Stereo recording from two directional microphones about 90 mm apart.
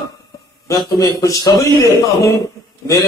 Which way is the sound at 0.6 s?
40° left (ahead or behind).